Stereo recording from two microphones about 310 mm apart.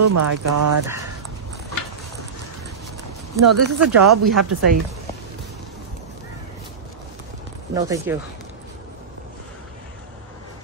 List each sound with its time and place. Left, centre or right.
0.0 s speech: right
3.4 s speech: right
7.7 s speech: centre